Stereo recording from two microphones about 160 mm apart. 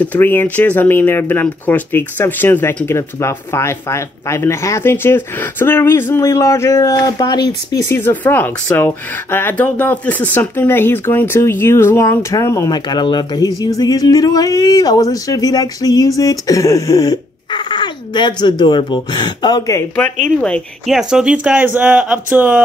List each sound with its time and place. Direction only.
0.0 s speech: 10° left (ahead or behind)
20.2 s speech: 5° left (ahead or behind); by 22.6 s 10° right (ahead or behind)